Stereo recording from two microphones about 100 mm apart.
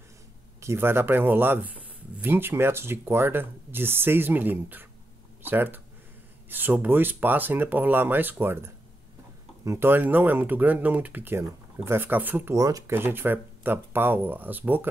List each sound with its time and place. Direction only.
0.6 s speech: 25° right (ahead or behind)
12.5 s speech: 35° right (ahead or behind)
12.9 s speech: 20° right (ahead or behind)